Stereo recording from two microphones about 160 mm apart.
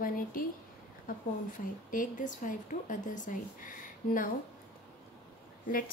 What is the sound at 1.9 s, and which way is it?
A woman's voice, 55° left (ahead or behind).